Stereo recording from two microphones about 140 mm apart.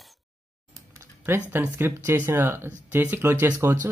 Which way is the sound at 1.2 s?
15° right (ahead or behind).